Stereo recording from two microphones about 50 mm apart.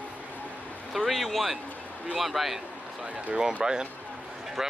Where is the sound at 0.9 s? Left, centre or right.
Centre.